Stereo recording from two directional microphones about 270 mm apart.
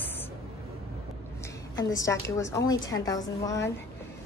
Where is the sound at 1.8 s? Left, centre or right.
Centre.